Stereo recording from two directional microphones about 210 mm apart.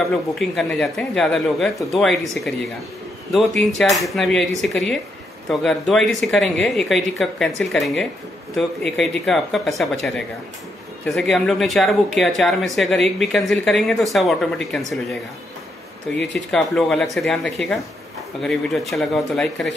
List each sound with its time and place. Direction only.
0.6 s speech: centre (ahead or behind)
3.3 s speech: centre (ahead or behind)
11.1 s speech: centre (ahead or behind)
16.5 s speech: centre (ahead or behind)